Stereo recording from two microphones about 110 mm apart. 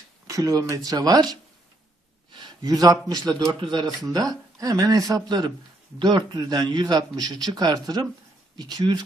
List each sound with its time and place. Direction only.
0.3 s speech: 30° right (ahead or behind)
2.3 s a sound: 40° right (ahead or behind)
3.1 s speech: 35° right (ahead or behind)